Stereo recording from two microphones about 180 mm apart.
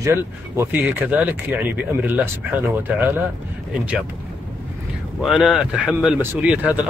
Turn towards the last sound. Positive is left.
turn(degrees=-10)  # may be behind; listen again after turning